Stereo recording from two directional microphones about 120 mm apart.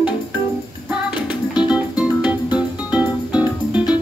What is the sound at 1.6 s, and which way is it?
Music, 5° right (ahead or behind).